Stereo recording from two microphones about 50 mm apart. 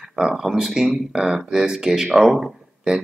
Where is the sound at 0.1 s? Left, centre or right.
Centre.